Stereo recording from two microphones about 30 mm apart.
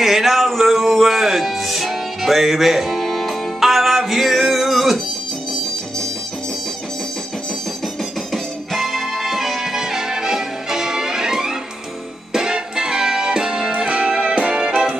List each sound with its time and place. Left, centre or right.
0.0 s music: centre
8.3 s music: centre; by 13.7 s right
13.8 s music: right